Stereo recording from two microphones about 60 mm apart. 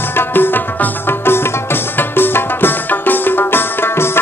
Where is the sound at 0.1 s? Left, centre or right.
Left.